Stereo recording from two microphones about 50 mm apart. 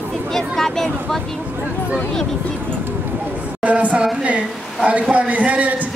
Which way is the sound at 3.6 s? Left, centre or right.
Right.